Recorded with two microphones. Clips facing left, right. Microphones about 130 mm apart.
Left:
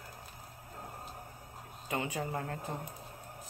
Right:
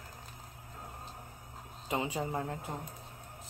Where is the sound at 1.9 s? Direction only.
25° right (ahead or behind).